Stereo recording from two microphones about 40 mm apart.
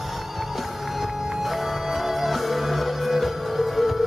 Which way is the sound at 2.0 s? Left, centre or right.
Centre.